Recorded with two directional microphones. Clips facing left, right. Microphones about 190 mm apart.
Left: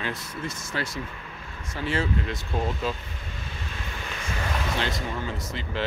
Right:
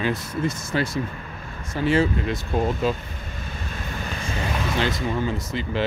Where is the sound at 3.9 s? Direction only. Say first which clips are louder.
Right 5 dB; 40° right (ahead or behind).